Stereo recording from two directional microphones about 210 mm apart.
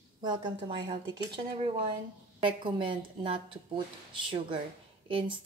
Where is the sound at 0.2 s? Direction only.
20° right (ahead or behind).